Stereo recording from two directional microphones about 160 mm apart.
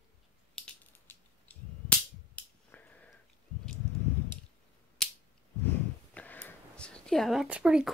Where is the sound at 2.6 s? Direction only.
10° left (ahead or behind).